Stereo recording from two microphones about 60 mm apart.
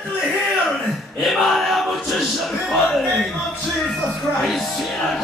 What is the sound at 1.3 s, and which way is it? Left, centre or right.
Male singing, centre.